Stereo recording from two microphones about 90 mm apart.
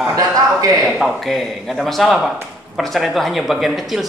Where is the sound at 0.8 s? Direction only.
Centre (ahead or behind).